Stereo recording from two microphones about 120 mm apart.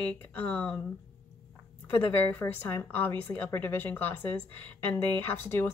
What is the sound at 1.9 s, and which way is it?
Speech, 20° left (ahead or behind).